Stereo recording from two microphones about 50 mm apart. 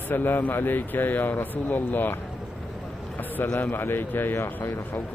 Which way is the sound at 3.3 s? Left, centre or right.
Left.